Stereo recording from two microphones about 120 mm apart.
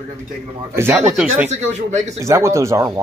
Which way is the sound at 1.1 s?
5° right (ahead or behind).